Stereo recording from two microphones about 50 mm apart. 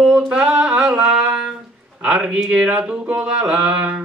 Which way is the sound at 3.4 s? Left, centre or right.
Right.